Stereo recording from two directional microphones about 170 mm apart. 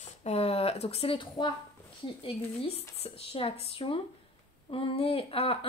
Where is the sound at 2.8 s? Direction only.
35° left (ahead or behind).